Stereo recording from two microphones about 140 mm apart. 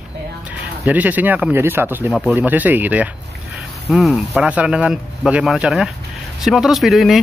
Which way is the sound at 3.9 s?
Centre (ahead or behind).